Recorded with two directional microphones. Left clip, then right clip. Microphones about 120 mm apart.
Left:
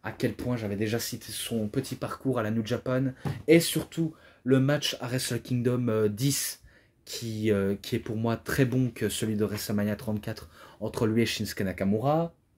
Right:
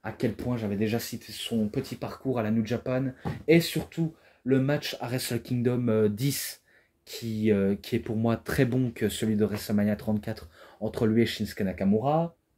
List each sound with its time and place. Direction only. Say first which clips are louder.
0.0 s speech: even; 5° left (ahead or behind); by 12.3 s 40° left (ahead or behind)